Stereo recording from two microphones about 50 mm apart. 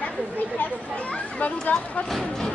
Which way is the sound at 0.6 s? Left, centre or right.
Left.